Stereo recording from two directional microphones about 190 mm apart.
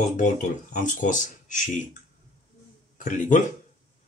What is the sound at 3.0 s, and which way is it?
Speech, 40° left (ahead or behind).